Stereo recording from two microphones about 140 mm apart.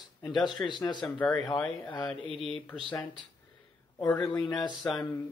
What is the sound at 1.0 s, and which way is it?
Speech, 10° left (ahead or behind).